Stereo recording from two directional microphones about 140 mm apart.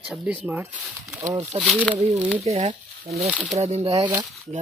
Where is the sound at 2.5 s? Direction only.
50° right (ahead or behind).